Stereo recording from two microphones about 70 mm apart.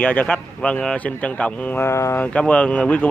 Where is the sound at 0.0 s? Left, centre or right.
Left.